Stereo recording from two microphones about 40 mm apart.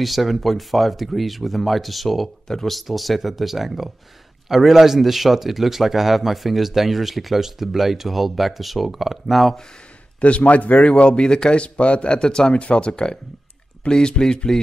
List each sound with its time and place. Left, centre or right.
0.0 s a man's voice: centre
2.4 s speech: centre
2.7 s a man's voice: centre
10.2 s speech: left
10.9 s speech: left